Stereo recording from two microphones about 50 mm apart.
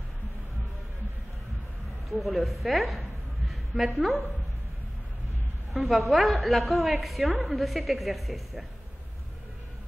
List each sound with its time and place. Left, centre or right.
2.0 s a woman's voice: centre
2.6 s a sound: centre
5.7 s a woman's voice: centre